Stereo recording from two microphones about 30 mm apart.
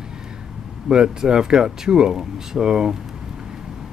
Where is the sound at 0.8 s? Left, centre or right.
Right.